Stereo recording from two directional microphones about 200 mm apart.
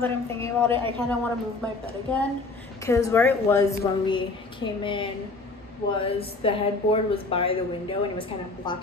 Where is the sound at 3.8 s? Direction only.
25° left (ahead or behind).